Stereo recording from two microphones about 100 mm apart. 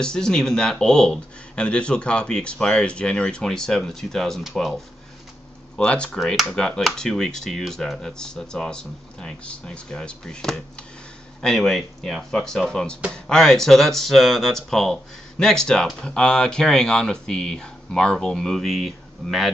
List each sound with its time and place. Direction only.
0.0 s speech: 5° left (ahead or behind)